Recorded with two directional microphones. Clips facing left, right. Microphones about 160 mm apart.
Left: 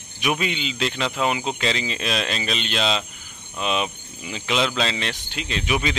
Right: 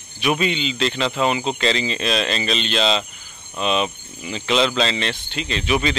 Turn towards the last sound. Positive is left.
turn(degrees=10)  # may be behind; listen again after turning